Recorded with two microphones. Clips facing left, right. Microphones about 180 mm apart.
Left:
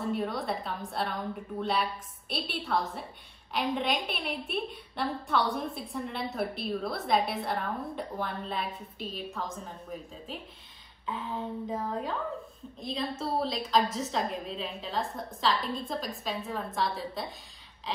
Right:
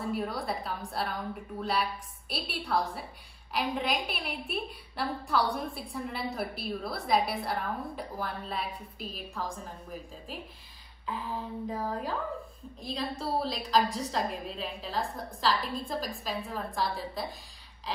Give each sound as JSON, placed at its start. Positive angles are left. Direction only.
{"t": 0.0, "sound": "a woman's voice", "side_deg": 0}